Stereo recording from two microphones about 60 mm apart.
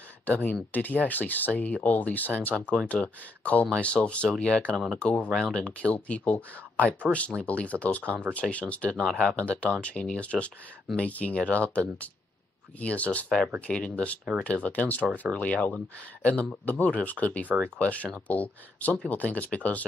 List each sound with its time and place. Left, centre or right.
0.3 s speech: left
2.6 s speech: centre
3.0 s speech: left
12.8 s speech: left